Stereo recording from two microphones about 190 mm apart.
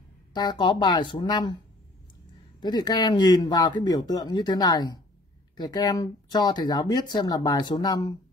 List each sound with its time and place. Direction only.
0.3 s speech: 25° left (ahead or behind)
2.6 s speech: 20° left (ahead or behind)